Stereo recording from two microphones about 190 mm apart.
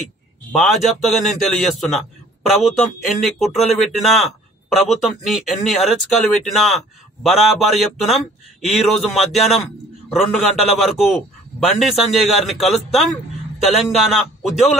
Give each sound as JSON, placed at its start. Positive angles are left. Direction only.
{"t": 0.5, "sound": "a man's voice", "side_deg": 0}